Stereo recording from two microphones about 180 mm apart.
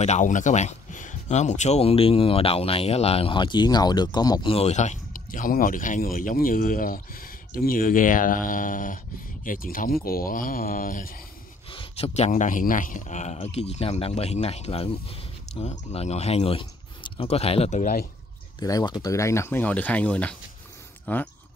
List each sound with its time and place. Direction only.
0.0 s speech: 40° left (ahead or behind)
11.7 s speech: 30° left (ahead or behind)
18.6 s speech: 20° left (ahead or behind)